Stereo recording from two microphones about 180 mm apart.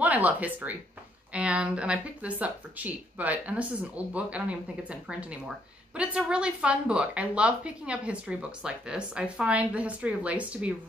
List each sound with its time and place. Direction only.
0.0 s a woman's voice: 10° right (ahead or behind)